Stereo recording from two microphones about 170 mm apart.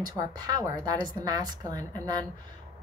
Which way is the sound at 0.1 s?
20° right (ahead or behind).